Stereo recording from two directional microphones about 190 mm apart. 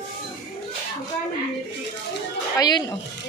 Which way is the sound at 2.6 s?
20° left (ahead or behind).